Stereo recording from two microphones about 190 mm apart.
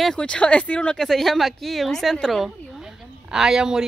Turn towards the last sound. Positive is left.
turn(degrees=-5)  # may be behind; listen again after turning